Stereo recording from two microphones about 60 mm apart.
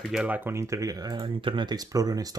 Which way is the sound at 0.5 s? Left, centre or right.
Right.